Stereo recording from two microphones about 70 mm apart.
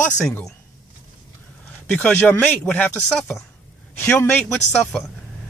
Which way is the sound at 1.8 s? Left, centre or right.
Centre.